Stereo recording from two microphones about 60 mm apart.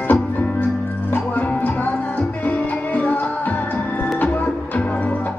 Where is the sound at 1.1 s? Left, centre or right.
Left.